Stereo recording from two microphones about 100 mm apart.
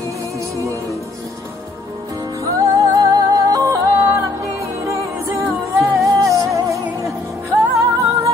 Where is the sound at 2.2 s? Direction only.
35° right (ahead or behind).